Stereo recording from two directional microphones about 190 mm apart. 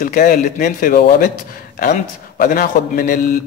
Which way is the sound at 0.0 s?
50° left (ahead or behind).